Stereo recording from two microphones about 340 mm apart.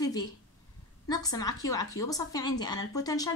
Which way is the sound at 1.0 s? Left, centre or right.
Centre.